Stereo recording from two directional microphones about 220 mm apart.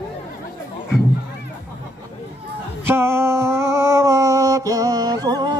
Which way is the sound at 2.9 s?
10° right (ahead or behind).